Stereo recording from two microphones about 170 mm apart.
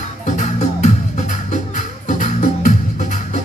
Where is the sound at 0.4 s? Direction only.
45° left (ahead or behind).